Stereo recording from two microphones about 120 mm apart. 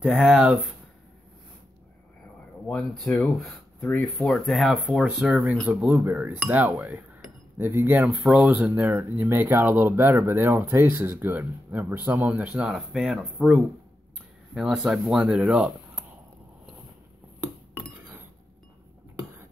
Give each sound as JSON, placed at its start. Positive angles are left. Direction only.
{"t": 0.0, "sound": "speech", "side_deg": 0}
{"t": 2.7, "sound": "speech", "side_deg": 5}